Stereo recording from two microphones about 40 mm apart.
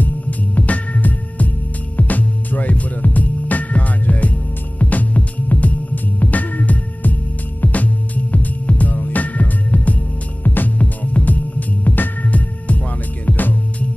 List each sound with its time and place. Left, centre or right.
0.0 s music: left
4.7 s organ: left
7.6 s music: left
10.4 s music: left